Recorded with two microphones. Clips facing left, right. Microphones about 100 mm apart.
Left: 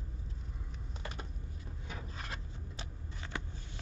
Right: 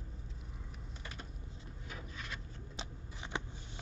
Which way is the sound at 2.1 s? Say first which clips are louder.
Left 1 dB; 40° left (ahead or behind).